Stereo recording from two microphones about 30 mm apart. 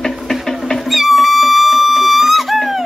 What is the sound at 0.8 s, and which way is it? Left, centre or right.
Music, centre.